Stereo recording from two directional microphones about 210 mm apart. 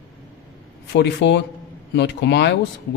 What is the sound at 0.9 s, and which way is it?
Speech, 55° left (ahead or behind).